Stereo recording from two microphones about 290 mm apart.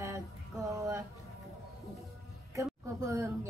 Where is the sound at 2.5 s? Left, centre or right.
Centre.